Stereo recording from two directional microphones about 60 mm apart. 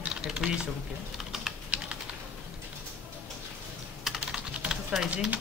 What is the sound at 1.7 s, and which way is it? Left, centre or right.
Typing, centre.